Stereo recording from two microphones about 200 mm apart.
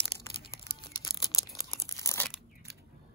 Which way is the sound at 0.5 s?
20° left (ahead or behind).